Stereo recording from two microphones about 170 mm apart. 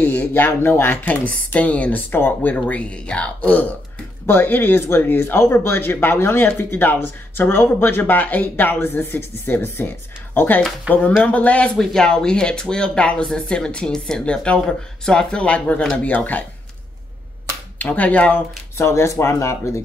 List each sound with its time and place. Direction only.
0.0 s speech: 10° left (ahead or behind)
17.7 s speech: 10° left (ahead or behind)